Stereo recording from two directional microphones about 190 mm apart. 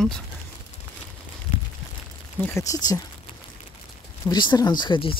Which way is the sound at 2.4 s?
15° left (ahead or behind).